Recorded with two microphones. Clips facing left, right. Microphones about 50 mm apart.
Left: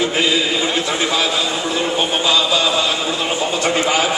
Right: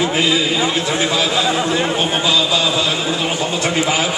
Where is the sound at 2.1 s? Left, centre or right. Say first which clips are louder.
Left 1 dB; centre.